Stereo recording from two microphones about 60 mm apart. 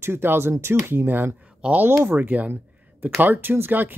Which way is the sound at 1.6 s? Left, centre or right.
Centre.